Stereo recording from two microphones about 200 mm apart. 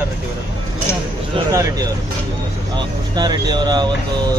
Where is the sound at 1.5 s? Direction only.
15° right (ahead or behind).